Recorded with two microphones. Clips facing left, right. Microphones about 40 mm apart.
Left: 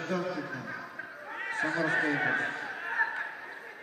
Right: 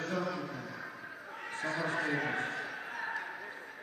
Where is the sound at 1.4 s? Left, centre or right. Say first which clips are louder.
Left 7 dB; left.